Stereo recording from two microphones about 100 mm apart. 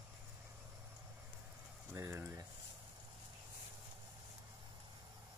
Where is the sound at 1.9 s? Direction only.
25° right (ahead or behind).